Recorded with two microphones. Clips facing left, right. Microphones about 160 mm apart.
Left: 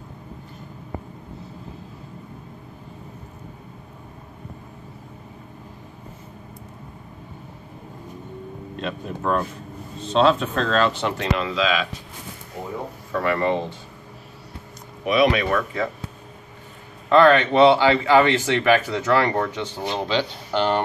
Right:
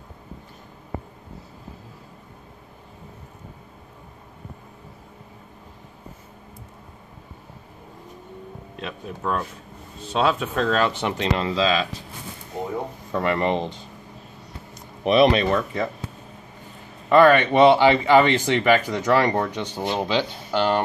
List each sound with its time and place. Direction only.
8.7 s speech: centre (ahead or behind)
11.3 s speech: 35° right (ahead or behind)
13.1 s speech: 20° right (ahead or behind)
15.0 s speech: 30° right (ahead or behind)
17.1 s speech: 10° right (ahead or behind)